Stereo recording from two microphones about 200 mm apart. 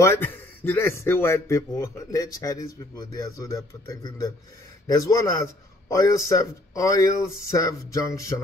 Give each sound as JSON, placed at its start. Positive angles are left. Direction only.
{"t": 0.0, "sound": "a man's voice", "side_deg": 10}